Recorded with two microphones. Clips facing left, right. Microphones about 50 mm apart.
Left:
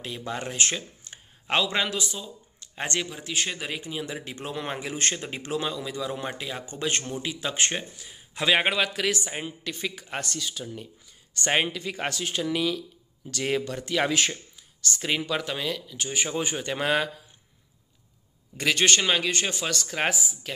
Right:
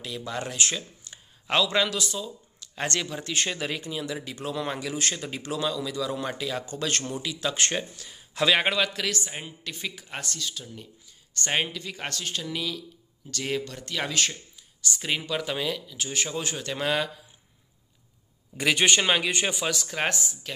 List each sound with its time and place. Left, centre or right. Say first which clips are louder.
0.0 s speech: even; left
3.2 s a man's voice: right 1 dB; centre
3.8 s a man's voice: right 1 dB; left
15.0 s speech: left 2 dB; centre
16.2 s a man's voice: left 3 dB; centre
18.6 s speech: even; centre